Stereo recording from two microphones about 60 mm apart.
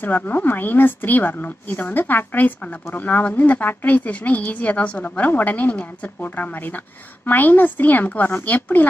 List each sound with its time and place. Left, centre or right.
0.0 s a woman's voice: left